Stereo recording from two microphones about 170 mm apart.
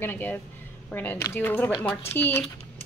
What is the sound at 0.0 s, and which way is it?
A woman's voice, 10° left (ahead or behind).